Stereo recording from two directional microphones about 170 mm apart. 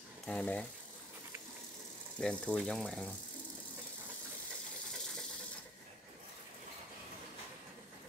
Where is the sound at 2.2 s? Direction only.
5° left (ahead or behind).